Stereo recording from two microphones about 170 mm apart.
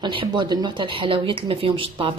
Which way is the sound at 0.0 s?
30° right (ahead or behind).